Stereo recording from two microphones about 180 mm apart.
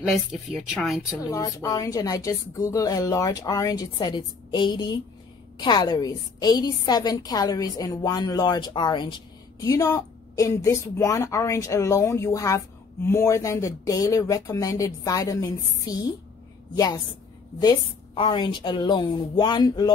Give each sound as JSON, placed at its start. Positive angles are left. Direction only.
{"t": 0.1, "sound": "speech", "side_deg": 0}
{"t": 1.3, "sound": "a woman's voice", "side_deg": 20}